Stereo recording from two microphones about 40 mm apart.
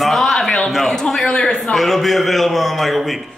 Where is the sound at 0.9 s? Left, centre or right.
Centre.